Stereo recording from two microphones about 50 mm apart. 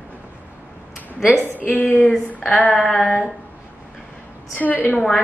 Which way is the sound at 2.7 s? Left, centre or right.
Centre.